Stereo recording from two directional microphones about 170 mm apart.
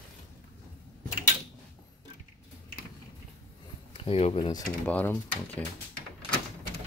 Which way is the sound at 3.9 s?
35° left (ahead or behind).